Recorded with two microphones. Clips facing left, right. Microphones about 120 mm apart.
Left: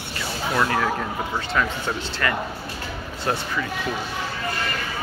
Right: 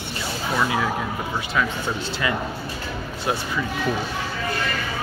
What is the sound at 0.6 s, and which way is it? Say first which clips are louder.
Speech: left 1 dB; 5° right (ahead or behind).